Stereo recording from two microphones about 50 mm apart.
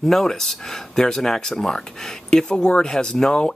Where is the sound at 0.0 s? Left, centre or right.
Centre.